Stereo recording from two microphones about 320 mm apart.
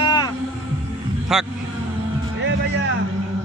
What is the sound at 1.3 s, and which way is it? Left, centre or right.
Speech, centre.